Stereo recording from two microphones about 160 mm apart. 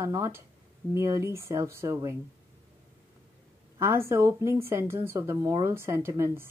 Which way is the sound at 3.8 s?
15° right (ahead or behind).